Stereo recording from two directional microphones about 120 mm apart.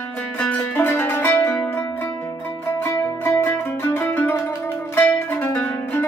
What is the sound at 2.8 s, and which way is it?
Music, 20° left (ahead or behind).